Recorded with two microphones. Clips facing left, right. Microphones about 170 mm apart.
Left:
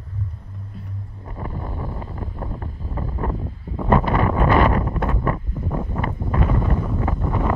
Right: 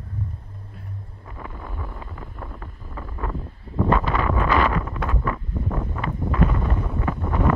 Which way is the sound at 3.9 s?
40° left (ahead or behind).